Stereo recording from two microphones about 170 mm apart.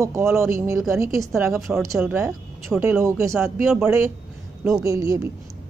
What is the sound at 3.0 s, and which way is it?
Speech, 15° right (ahead or behind).